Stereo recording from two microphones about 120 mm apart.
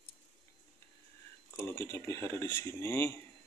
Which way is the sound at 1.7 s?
20° left (ahead or behind).